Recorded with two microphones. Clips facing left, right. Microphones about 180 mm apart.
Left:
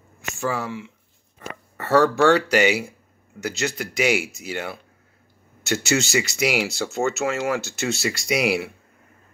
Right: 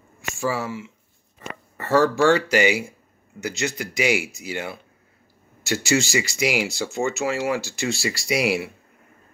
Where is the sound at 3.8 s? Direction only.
60° left (ahead or behind).